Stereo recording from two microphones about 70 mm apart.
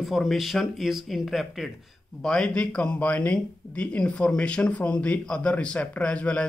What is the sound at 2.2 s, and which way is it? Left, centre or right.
Speech, centre.